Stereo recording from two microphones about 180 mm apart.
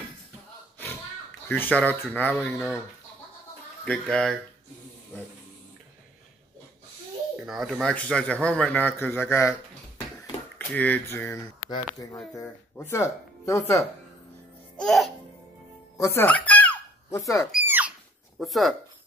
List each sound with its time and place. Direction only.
1.5 s speech: 10° left (ahead or behind)
3.8 s speech: 5° left (ahead or behind)
7.4 s speech: centre (ahead or behind)
10.7 s speech: 10° left (ahead or behind)
14.8 s speech: centre (ahead or behind)
16.0 s a sound: 15° left (ahead or behind)
17.6 s a sound: 10° right (ahead or behind)
18.4 s speech: centre (ahead or behind)